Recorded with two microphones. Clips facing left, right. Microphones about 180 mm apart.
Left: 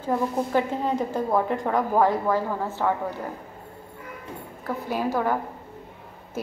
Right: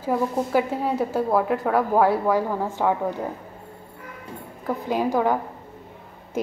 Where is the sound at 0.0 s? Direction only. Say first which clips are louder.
Right 1 dB; 10° right (ahead or behind).